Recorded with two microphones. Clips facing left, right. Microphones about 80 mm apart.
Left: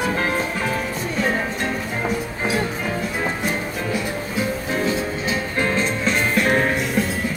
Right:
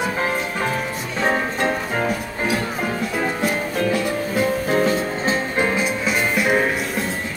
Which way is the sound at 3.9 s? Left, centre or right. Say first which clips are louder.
Right 3 dB; right.